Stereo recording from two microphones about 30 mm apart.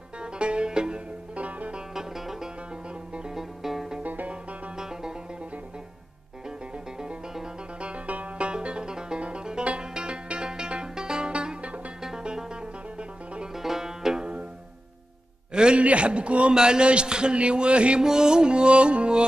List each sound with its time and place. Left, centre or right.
0.2 s music: right
1.3 s music: right
2.0 s music: centre
4.0 s music: right
4.7 s music: right
8.4 s music: right
11.2 s music: right
13.6 s music: centre
15.5 s music: right
15.8 s a man's voice: right
16.5 s a man's voice: right
18.0 s a man's voice: right